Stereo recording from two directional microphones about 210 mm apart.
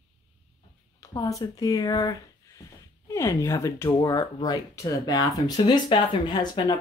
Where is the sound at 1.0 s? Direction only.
15° left (ahead or behind).